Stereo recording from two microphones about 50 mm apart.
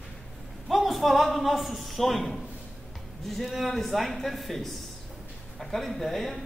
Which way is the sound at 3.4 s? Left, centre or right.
Centre.